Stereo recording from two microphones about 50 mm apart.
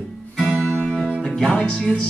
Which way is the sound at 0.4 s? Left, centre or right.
Centre.